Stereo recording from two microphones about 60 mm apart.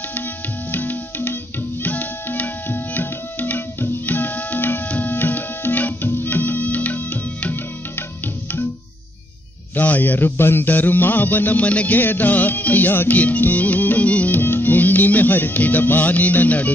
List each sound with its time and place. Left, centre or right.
0.7 s music: left
1.8 s tabla: left
9.8 s speech: left